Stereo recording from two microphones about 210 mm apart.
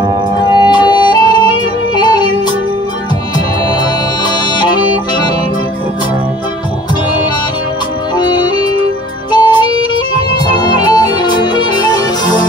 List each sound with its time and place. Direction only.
0.6 s music: 20° left (ahead or behind)
2.0 s yodeling: 20° left (ahead or behind)
3.3 s music: 20° left (ahead or behind)
8.2 s music: 20° left (ahead or behind)